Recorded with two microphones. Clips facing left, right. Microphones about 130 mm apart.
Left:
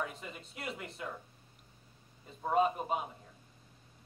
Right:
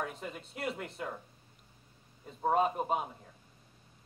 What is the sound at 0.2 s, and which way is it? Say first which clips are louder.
Speech: right 5 dB; 45° right (ahead or behind).